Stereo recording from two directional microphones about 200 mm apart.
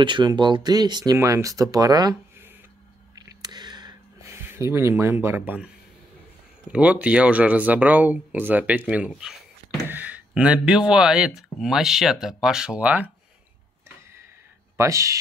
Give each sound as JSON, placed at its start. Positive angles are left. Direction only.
{"t": 0.0, "sound": "speech", "side_deg": -20}
{"t": 3.2, "sound": "a sound", "side_deg": -20}
{"t": 5.2, "sound": "speech", "side_deg": -10}
{"t": 6.7, "sound": "speech", "side_deg": -5}
{"t": 14.8, "sound": "speech", "side_deg": -15}